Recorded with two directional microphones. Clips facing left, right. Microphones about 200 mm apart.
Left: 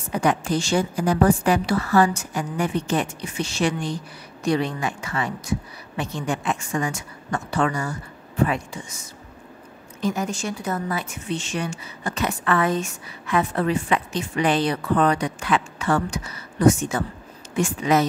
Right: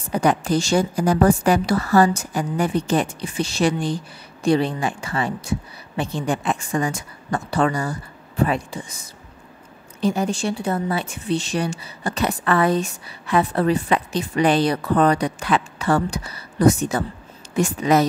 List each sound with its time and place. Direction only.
0.1 s a woman's voice: 35° right (ahead or behind)